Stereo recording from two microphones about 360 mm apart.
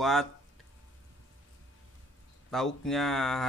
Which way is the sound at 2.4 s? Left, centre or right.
Centre.